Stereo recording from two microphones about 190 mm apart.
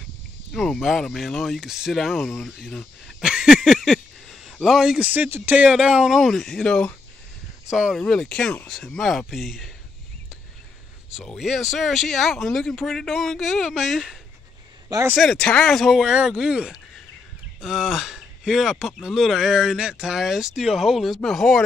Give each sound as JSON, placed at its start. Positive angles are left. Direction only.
{"t": 0.5, "sound": "speech", "side_deg": 0}
{"t": 11.1, "sound": "speech", "side_deg": 0}
{"t": 14.9, "sound": "speech", "side_deg": -15}
{"t": 15.1, "sound": "speech", "side_deg": 5}